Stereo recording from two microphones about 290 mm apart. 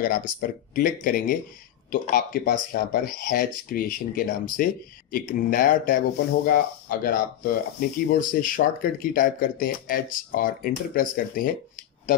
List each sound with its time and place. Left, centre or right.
0.0 s speech: left